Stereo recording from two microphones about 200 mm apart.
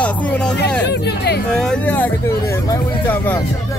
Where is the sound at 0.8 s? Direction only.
55° left (ahead or behind).